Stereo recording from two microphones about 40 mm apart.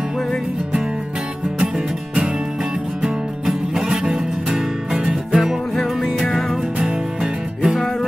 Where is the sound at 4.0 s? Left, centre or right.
Right.